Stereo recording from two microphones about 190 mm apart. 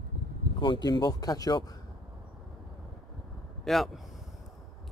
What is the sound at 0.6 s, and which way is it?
Speech, 25° left (ahead or behind).